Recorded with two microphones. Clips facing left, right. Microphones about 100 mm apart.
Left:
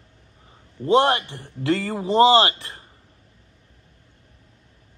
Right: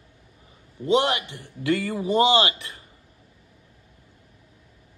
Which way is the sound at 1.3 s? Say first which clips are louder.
Left 2 dB; 25° left (ahead or behind).